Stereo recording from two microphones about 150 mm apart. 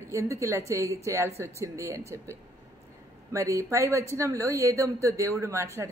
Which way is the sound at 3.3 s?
20° right (ahead or behind).